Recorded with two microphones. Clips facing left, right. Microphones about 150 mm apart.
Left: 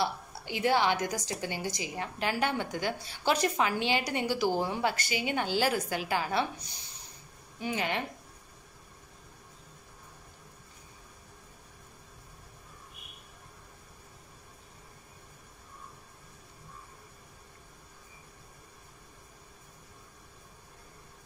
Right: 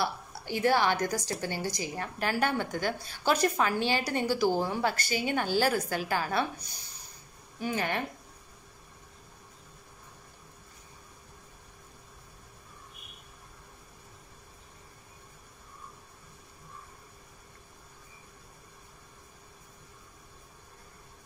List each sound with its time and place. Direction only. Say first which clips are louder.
0.0 s a woman's voice: even; 15° left (ahead or behind)
7.6 s speech: right 1 dB; 20° left (ahead or behind)